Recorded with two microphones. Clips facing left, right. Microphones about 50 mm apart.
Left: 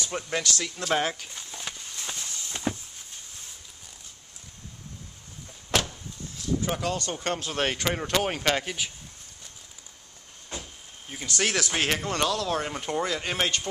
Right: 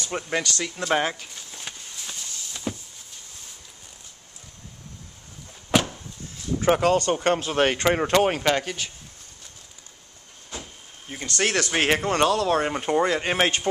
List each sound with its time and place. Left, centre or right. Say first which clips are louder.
0.1 s speech: right 4 dB; centre
5.7 s vehicle: right 5 dB; centre
6.6 s speech: right 9 dB; right
7.3 s speech: right 6 dB; right
8.3 s speech: right 4 dB; centre
8.5 s speech: right 2 dB; centre
11.1 s speech: right 3 dB; centre
11.7 s speech: right 5 dB; right
13.2 s speech: right 5 dB; right